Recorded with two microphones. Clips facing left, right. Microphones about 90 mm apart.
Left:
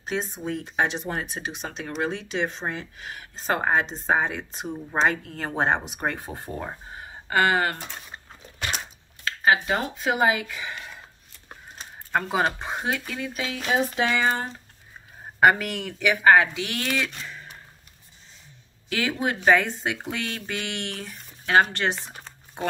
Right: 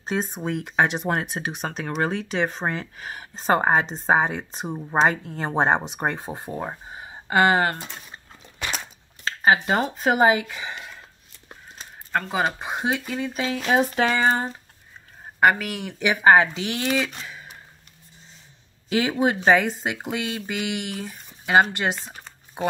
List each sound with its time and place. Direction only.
0.0 s speech: 35° right (ahead or behind)
0.4 s speech: 60° right (ahead or behind); by 7.7 s 25° right (ahead or behind)
9.2 s speech: 30° right (ahead or behind)
10.2 s speech: 25° right (ahead or behind)
12.1 s speech: 5° left (ahead or behind)
12.5 s speech: 15° right (ahead or behind)
13.3 s speech: 30° right (ahead or behind)
13.7 s speech: 50° right (ahead or behind)
15.4 s speech: centre (ahead or behind)
15.8 s speech: 20° right (ahead or behind)
17.2 s a sound: 5° right (ahead or behind)
18.9 s speech: 25° right (ahead or behind)